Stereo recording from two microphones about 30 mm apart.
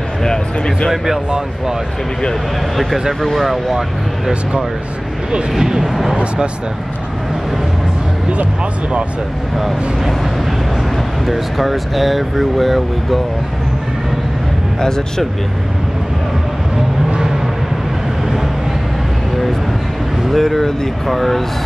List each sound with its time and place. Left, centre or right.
0.2 s speech: left
3.3 s speech: centre
5.6 s speech: centre
11.2 s speech: centre
14.8 s speech: centre
20.2 s speech: centre